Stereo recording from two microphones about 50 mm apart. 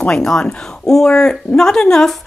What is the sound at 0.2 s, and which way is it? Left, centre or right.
Speech, centre.